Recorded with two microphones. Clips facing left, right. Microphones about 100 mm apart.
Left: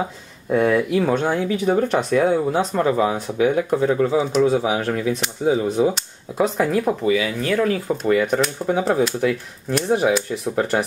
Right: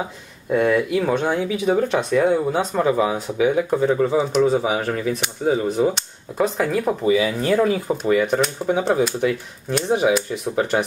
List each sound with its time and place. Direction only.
0.5 s speech: centre (ahead or behind)
7.1 s speech: 30° right (ahead or behind)
8.0 s speech: centre (ahead or behind)